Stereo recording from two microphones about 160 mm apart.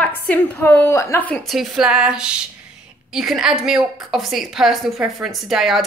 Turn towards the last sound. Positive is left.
turn(degrees=0)  # may be behind; listen again after turning